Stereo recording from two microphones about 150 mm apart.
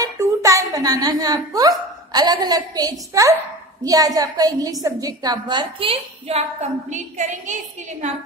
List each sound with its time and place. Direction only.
0.0 s a woman's voice: 20° right (ahead or behind); by 7.5 s 55° right (ahead or behind)